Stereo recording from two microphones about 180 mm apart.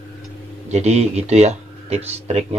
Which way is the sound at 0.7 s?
35° right (ahead or behind).